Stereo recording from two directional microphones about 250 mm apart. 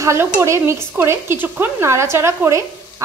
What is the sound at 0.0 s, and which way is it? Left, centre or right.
Speech, centre.